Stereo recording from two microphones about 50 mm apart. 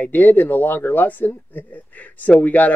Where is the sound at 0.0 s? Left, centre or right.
Left.